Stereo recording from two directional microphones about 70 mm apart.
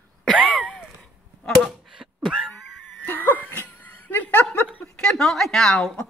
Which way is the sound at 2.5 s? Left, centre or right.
Centre.